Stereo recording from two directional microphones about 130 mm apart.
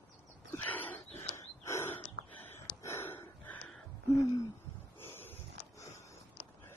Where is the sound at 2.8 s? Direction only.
20° left (ahead or behind).